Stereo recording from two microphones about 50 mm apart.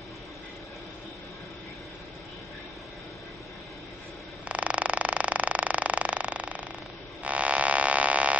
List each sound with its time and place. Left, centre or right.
4.5 s creak: right
7.2 s mains hum: right